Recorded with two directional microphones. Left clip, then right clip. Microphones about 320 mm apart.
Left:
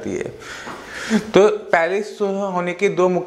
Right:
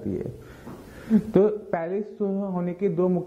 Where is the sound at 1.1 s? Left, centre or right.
Centre.